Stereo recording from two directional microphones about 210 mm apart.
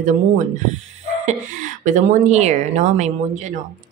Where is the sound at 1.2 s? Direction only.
35° right (ahead or behind).